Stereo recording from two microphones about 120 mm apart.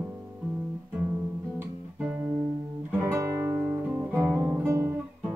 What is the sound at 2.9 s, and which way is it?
Music, 25° right (ahead or behind).